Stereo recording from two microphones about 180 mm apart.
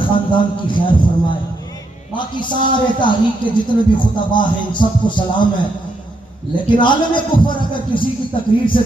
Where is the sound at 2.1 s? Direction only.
25° left (ahead or behind).